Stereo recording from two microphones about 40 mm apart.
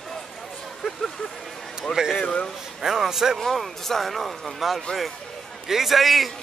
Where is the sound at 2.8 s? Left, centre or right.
Centre.